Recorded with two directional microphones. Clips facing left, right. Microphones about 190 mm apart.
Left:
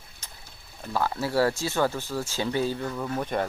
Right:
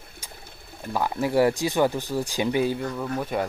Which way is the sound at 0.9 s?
15° right (ahead or behind).